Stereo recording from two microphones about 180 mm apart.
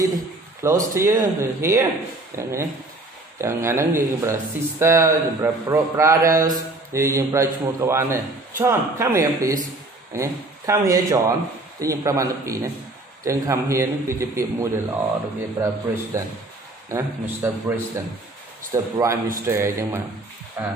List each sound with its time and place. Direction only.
0.6 s speech: 15° right (ahead or behind)